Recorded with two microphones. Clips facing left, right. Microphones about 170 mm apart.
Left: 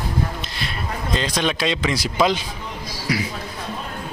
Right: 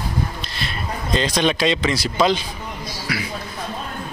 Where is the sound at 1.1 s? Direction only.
5° left (ahead or behind).